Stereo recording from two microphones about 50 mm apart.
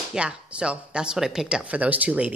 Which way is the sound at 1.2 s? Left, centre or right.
Centre.